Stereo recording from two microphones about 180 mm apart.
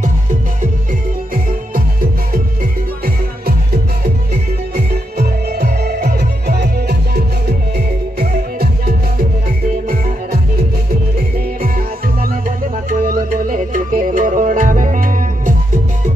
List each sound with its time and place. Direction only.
1.3 s music: 50° right (ahead or behind)
4.7 s music: 60° right (ahead or behind)
12.2 s music: 50° right (ahead or behind)